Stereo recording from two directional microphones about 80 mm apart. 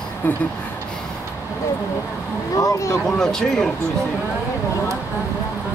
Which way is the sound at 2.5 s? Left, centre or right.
Left.